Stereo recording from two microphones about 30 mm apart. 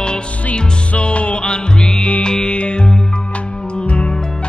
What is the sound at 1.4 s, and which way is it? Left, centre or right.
Music, left.